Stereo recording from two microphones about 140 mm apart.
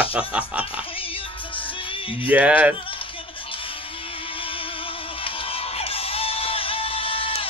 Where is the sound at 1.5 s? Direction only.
40° left (ahead or behind).